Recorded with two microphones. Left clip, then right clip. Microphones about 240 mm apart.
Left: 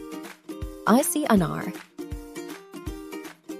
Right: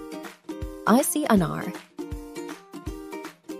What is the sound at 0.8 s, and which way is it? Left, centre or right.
Speech, centre.